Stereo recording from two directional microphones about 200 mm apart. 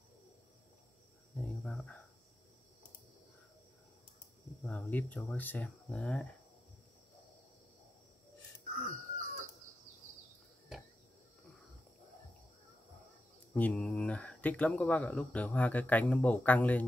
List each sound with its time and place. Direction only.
1.3 s cricket: centre (ahead or behind)
4.5 s a sound: centre (ahead or behind)
4.9 s speech: 10° left (ahead or behind)
8.9 s chicken: 40° right (ahead or behind)
13.5 s speech: 5° left (ahead or behind)